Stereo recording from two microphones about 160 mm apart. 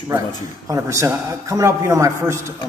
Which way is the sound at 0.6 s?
20° right (ahead or behind).